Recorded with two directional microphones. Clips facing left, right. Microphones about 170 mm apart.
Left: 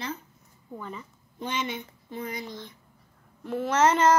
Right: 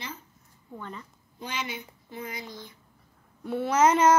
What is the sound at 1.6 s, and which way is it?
Speech, 5° right (ahead or behind).